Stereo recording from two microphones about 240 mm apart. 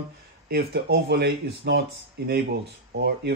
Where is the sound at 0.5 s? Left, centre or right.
Right.